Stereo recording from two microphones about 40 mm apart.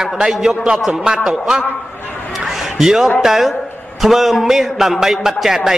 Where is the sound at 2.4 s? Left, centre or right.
Centre.